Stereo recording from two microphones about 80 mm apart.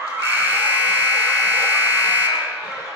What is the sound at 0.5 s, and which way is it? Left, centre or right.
Buzzer, right.